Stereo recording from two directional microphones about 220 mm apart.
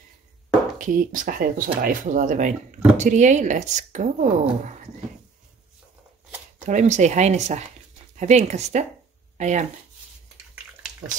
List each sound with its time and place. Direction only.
0.7 s speech: 40° right (ahead or behind)
6.6 s speech: 35° right (ahead or behind)